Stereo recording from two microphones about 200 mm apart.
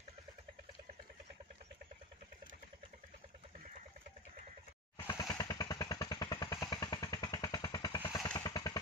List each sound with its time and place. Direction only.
4.9 s motorcycle: 20° left (ahead or behind)